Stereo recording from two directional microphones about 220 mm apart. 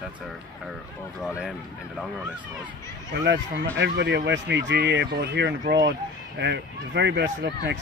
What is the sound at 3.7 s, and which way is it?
Speech, 50° right (ahead or behind).